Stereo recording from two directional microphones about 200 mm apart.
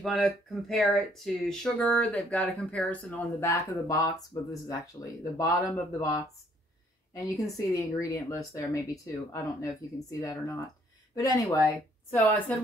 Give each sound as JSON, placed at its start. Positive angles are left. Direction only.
{"t": 0.0, "sound": "speech", "side_deg": 0}
{"t": 11.1, "sound": "speech", "side_deg": 15}